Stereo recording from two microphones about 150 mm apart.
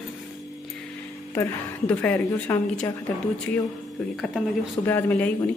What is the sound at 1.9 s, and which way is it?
Speech, 10° left (ahead or behind).